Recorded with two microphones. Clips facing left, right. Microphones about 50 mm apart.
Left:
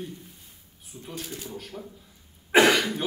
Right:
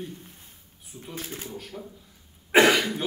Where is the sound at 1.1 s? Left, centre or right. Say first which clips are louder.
Even; right.